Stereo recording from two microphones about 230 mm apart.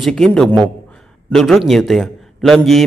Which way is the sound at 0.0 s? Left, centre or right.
Centre.